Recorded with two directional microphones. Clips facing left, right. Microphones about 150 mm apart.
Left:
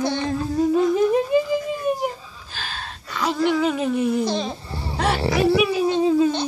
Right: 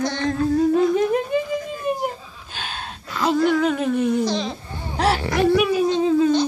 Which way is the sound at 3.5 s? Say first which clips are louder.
Right 1 dB; 5° left (ahead or behind).